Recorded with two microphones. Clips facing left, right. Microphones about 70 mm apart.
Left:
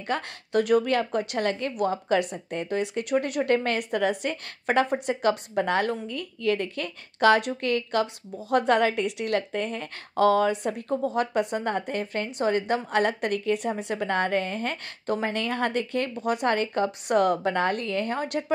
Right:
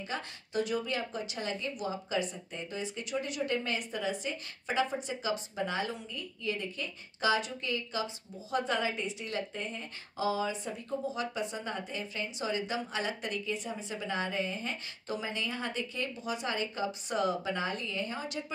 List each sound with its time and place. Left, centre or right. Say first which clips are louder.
0.1 s a woman's voice: left 11 dB; left